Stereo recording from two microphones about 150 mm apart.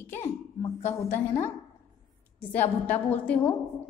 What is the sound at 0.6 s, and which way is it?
Speech, 40° left (ahead or behind).